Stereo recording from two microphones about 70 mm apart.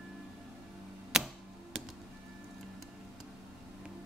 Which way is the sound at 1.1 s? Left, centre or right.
Centre.